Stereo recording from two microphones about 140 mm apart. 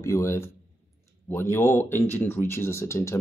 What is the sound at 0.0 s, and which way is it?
A man's voice, 20° left (ahead or behind).